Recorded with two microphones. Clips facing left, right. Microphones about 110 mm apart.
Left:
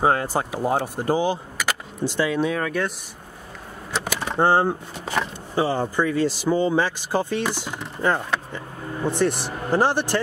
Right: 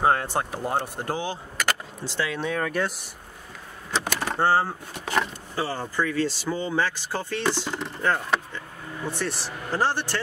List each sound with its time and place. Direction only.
0.0 s speech: 5° left (ahead or behind)
2.6 s speech: 5° right (ahead or behind)
3.9 s a sound: centre (ahead or behind)
4.4 s speech: 20° left (ahead or behind)